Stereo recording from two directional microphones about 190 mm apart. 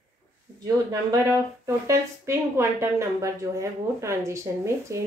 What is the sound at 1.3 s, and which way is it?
A woman's voice, 15° right (ahead or behind).